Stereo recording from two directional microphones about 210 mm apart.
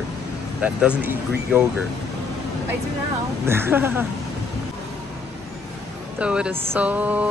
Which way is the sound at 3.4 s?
10° right (ahead or behind).